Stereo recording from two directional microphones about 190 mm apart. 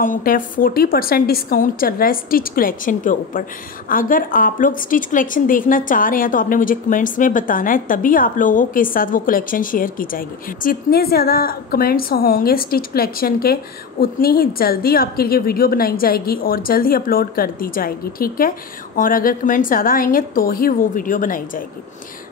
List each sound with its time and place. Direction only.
0.0 s a woman's voice: 45° left (ahead or behind)